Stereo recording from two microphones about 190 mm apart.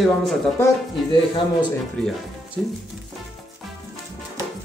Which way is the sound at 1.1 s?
25° left (ahead or behind).